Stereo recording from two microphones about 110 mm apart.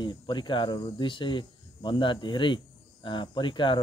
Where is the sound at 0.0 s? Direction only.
45° left (ahead or behind).